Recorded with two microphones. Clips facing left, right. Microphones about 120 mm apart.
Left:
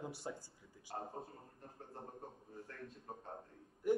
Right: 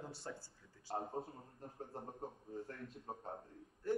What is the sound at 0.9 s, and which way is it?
A man's voice, 25° right (ahead or behind).